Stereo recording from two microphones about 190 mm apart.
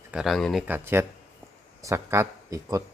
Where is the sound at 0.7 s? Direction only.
10° right (ahead or behind).